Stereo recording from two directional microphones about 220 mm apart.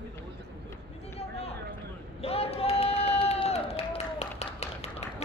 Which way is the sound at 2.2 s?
25° left (ahead or behind).